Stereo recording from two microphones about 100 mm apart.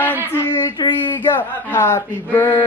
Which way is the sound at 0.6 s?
50° left (ahead or behind).